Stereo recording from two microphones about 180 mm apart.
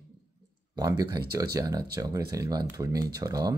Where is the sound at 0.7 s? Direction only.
20° right (ahead or behind).